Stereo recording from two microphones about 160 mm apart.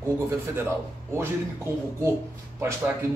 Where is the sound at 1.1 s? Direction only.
15° right (ahead or behind).